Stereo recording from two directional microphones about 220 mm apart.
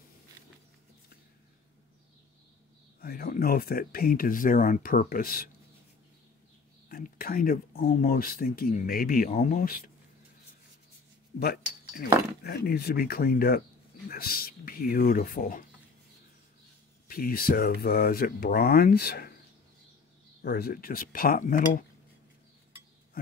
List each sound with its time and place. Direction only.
3.0 s speech: 45° left (ahead or behind)
6.9 s speech: 40° left (ahead or behind)
11.3 s speech: 45° left (ahead or behind)
17.1 s speech: 40° left (ahead or behind)
20.4 s speech: 45° left (ahead or behind)